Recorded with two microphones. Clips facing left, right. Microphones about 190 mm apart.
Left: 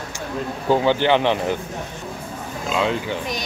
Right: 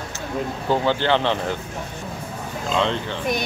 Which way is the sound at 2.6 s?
5° left (ahead or behind).